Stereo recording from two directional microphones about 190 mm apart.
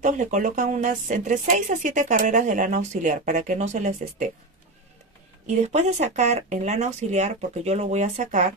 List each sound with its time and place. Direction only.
0.0 s speech: 40° right (ahead or behind)
5.5 s speech: 35° right (ahead or behind)